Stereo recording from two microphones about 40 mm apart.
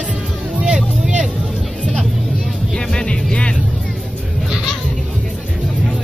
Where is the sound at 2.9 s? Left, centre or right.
Left.